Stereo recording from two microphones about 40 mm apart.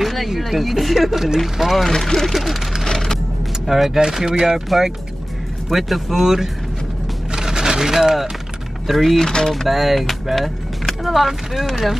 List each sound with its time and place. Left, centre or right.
0.0 s a sound: centre
0.4 s speech: centre
1.9 s speech: centre
2.8 s music: centre
3.6 s speech: centre
7.3 s a sound: centre
8.8 s speech: centre
9.7 s speech: centre